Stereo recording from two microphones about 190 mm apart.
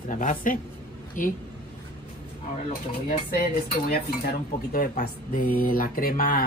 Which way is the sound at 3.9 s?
55° left (ahead or behind).